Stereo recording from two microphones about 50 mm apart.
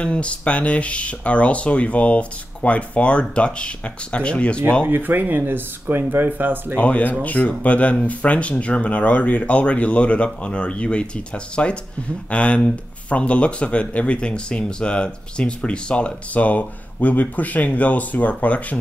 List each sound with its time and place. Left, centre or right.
0.0 s speech: left
4.8 s speech: right
6.8 s speech: left